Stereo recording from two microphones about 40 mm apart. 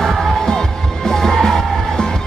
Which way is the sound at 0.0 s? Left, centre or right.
Centre.